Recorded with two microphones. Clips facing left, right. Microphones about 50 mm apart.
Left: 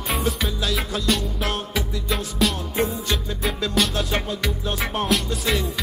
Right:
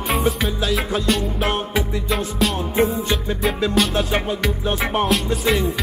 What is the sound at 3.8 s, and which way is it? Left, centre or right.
Music, centre.